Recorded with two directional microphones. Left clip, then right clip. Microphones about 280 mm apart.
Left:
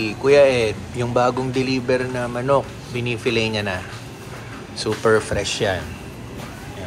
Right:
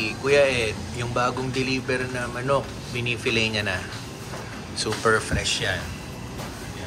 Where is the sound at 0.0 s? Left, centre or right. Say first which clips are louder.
Left 6 dB; centre.